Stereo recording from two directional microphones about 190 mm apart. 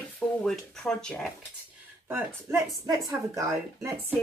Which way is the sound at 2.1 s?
10° right (ahead or behind).